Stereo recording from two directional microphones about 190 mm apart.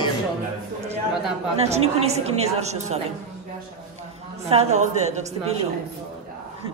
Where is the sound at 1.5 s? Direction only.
35° right (ahead or behind).